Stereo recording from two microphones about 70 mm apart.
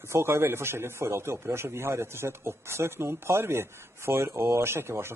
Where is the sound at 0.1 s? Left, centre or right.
Right.